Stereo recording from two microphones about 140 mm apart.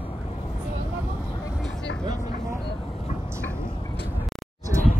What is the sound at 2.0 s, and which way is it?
Vehicle, 25° right (ahead or behind).